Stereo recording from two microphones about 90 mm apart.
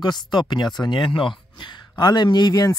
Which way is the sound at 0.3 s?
55° left (ahead or behind).